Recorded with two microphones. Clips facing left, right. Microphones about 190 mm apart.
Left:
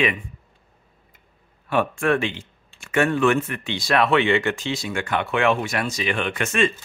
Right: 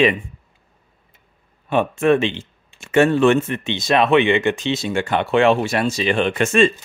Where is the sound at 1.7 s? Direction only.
20° right (ahead or behind).